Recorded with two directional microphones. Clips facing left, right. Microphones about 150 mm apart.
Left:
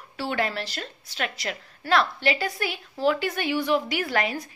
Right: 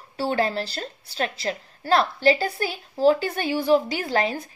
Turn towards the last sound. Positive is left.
turn(degrees=-30)  # may be behind; listen again after turning